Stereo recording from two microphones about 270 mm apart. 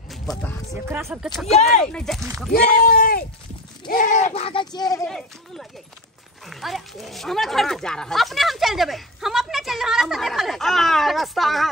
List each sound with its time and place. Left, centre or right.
0.1 s music: centre
0.8 s speech: centre
2.5 s speech: left; by 5.0 s centre
5.0 s speech: centre